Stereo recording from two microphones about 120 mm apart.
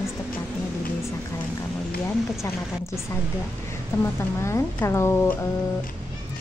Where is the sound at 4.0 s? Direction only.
20° left (ahead or behind).